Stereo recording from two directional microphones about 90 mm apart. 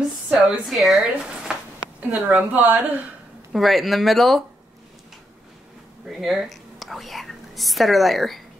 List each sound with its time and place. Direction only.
0.3 s speech: 5° right (ahead or behind)
2.0 s a woman's voice: 20° right (ahead or behind)
3.5 s speech: centre (ahead or behind)
6.0 s speech: centre (ahead or behind)